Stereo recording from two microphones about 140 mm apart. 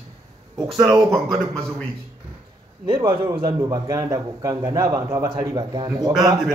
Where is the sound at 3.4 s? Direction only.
25° right (ahead or behind).